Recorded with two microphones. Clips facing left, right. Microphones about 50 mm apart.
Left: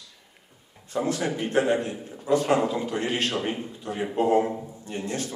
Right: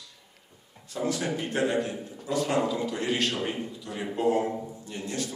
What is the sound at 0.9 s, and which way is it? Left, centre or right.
A man's voice, left.